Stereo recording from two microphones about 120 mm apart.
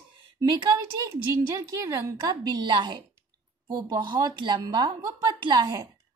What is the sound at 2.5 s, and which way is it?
A woman's voice, 40° right (ahead or behind).